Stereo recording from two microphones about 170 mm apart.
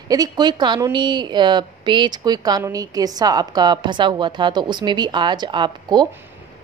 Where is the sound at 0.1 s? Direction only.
25° right (ahead or behind).